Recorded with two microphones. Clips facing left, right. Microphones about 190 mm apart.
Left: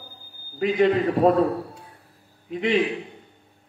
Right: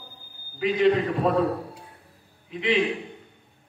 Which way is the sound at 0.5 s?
45° left (ahead or behind).